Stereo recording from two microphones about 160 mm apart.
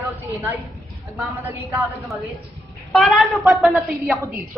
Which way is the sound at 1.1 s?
20° right (ahead or behind).